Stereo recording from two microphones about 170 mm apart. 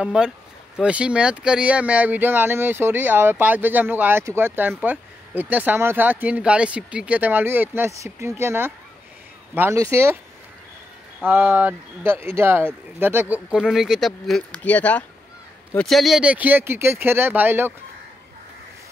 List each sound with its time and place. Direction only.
0.0 s speech: 5° right (ahead or behind)
11.1 s speech: 10° right (ahead or behind)